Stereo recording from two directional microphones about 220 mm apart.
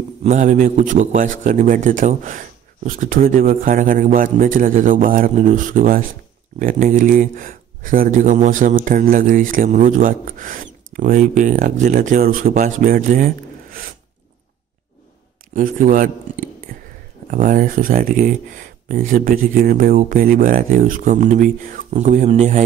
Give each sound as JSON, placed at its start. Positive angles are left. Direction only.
{"t": 0.2, "sound": "speech", "side_deg": -35}
{"t": 15.5, "sound": "speech", "side_deg": -40}